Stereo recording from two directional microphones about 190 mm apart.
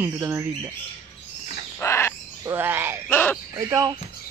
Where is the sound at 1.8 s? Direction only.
15° left (ahead or behind).